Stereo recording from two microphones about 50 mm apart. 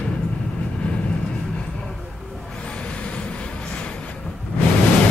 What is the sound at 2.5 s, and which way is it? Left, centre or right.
Vehicle, left.